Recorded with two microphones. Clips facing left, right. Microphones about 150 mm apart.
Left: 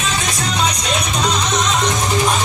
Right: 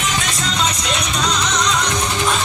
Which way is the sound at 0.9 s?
20° left (ahead or behind).